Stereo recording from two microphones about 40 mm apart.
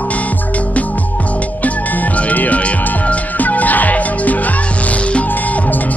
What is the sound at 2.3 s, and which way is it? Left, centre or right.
Music, left.